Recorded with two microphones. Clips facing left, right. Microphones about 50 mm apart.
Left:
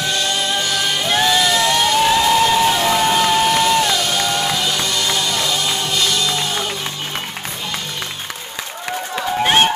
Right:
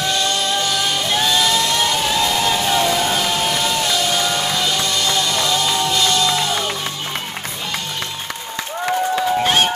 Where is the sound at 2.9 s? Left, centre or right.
Centre.